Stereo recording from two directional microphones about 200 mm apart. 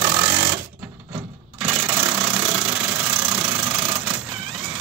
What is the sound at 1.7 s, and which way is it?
Vehicle, 15° right (ahead or behind).